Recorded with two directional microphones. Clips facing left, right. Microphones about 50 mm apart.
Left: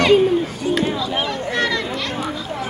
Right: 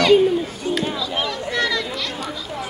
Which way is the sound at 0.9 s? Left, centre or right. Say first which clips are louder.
Left 2 dB; left.